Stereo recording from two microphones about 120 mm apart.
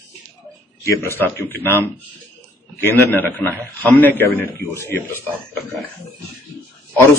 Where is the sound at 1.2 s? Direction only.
15° left (ahead or behind).